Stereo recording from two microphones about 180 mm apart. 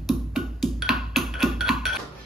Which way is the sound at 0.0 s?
Centre (ahead or behind).